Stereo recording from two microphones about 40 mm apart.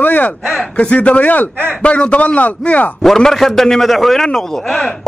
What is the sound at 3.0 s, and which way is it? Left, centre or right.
A man's voice, centre.